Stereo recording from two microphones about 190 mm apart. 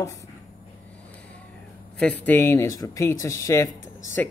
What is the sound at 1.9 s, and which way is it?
Speech, 5° left (ahead or behind).